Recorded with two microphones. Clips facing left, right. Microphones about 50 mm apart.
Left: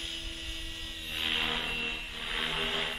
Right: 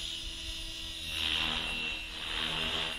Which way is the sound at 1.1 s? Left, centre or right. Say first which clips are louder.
Left 2 dB; centre.